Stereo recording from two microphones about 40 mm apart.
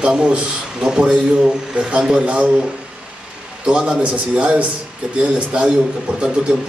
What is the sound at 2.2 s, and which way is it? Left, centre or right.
Speech, right.